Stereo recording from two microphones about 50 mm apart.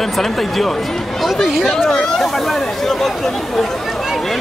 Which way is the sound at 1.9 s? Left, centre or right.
Centre.